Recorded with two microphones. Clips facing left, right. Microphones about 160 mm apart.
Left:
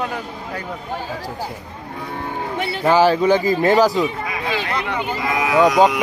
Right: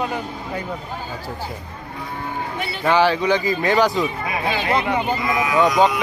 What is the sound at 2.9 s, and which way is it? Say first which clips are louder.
Speech: left 3 dB; 40° left (ahead or behind).